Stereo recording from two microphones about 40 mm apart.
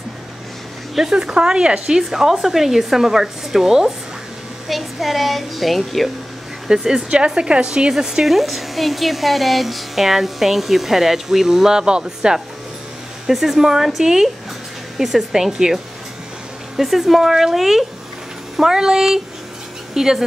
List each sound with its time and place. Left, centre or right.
1.1 s speech: right; by 6.1 s centre
6.7 s speech: centre
7.9 s speech: centre
8.3 s speech: centre
13.3 s speech: centre